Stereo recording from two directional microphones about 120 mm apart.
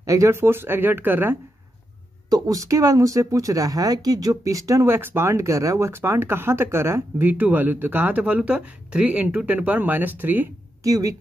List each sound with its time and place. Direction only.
0.0 s speech: 25° right (ahead or behind)
2.2 s speech: 30° right (ahead or behind); by 10.5 s 15° right (ahead or behind)
10.8 s speech: 30° right (ahead or behind)